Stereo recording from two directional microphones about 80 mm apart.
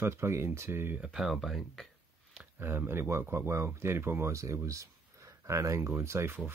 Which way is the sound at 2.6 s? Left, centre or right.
Right.